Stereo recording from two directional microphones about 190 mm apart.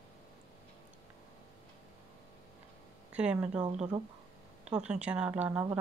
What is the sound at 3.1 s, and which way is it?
Speech, 5° right (ahead or behind).